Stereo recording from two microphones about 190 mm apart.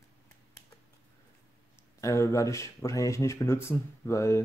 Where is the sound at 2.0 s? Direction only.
15° left (ahead or behind).